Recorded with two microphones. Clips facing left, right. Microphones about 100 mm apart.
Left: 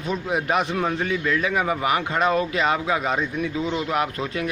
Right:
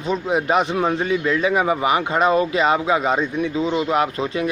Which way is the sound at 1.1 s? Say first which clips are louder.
Right 4 dB; 15° right (ahead or behind).